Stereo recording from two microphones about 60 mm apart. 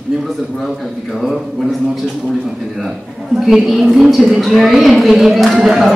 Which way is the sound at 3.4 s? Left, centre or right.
Centre.